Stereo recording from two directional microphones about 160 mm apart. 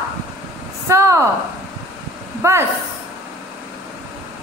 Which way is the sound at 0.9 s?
20° right (ahead or behind).